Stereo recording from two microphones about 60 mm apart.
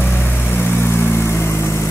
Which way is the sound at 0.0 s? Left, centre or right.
Left.